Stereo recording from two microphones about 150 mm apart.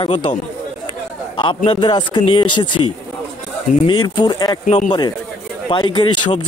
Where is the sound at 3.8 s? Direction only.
30° left (ahead or behind).